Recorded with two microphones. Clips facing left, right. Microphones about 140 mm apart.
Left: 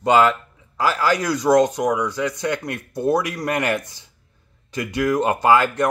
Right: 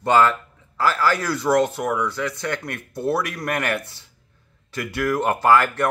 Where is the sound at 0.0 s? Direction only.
15° left (ahead or behind).